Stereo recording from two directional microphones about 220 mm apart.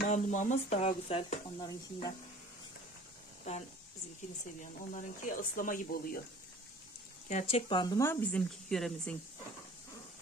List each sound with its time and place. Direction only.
0.0 s speech: 35° left (ahead or behind)
4.9 s speech: 35° left (ahead or behind)
7.2 s speech: 30° left (ahead or behind); by 9.1 s centre (ahead or behind)